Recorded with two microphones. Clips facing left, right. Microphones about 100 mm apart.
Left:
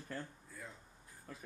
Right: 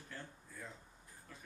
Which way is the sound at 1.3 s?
45° left (ahead or behind).